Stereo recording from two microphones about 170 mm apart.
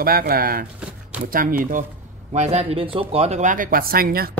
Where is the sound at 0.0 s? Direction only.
60° right (ahead or behind).